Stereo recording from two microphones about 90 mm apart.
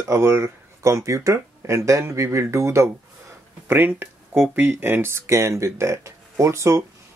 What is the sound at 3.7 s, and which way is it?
Speech, 20° right (ahead or behind).